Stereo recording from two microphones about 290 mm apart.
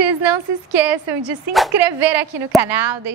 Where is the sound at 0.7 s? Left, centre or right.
Centre.